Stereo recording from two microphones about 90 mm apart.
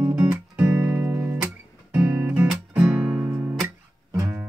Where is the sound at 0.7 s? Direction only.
40° right (ahead or behind).